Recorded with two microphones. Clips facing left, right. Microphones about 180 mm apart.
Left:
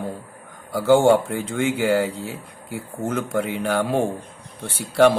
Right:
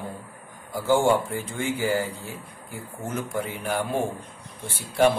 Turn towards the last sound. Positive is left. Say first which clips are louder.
# left 5 dB
turn(degrees=85)